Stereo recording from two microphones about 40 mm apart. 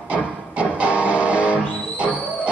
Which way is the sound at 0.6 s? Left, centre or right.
Right.